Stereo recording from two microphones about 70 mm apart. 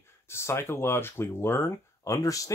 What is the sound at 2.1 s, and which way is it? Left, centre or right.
Speech, left.